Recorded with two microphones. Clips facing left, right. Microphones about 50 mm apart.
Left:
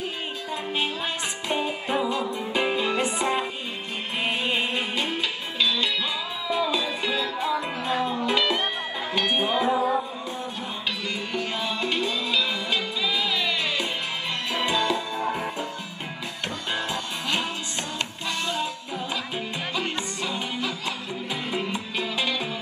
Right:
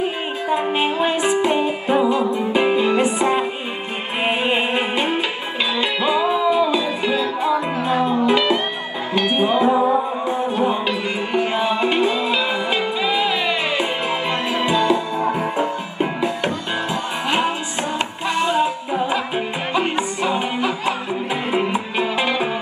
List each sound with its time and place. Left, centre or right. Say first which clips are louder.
0.0 s music: right 9 dB; right
4.2 s music: right 7 dB; right
10.2 s music: right 13 dB; right
17.9 s music: right 10 dB; right